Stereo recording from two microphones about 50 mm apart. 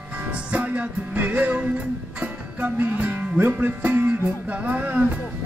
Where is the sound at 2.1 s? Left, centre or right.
Right.